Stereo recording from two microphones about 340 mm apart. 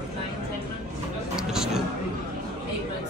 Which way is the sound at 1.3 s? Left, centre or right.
Centre.